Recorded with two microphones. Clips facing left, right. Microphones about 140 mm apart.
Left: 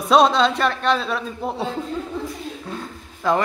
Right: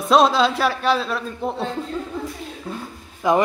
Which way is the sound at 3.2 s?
15° right (ahead or behind).